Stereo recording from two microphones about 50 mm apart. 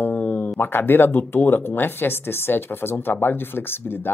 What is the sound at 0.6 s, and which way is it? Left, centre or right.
Speech, left.